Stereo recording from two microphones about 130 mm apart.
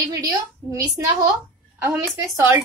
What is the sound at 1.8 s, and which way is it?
Speech, 20° right (ahead or behind).